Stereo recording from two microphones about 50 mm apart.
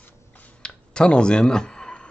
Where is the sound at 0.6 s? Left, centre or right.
Centre.